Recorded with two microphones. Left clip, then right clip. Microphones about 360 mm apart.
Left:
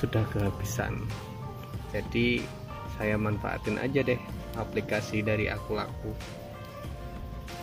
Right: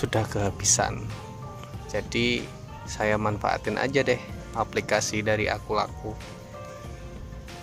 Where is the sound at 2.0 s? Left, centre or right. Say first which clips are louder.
Right 3 dB; centre.